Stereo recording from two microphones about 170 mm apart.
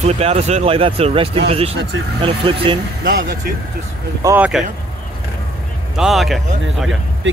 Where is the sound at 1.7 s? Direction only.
90° right.